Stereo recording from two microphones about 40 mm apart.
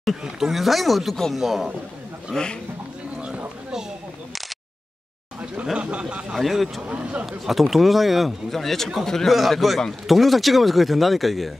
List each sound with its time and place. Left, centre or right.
0.2 s a man's voice: centre
5.8 s a man's voice: right
6.3 s a man's voice: centre
6.9 s a man's voice: right
7.4 s a man's voice: centre